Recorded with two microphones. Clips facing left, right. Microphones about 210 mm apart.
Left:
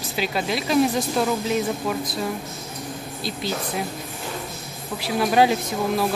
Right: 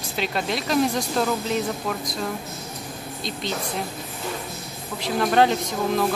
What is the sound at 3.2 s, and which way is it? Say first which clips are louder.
Speech: left 1 dB; 5° left (ahead or behind).